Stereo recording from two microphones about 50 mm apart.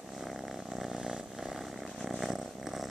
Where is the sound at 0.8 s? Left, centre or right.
Centre.